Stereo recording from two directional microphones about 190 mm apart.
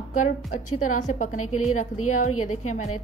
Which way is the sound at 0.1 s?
40° left (ahead or behind).